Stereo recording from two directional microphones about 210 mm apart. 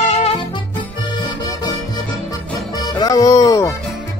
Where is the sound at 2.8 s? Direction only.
20° left (ahead or behind).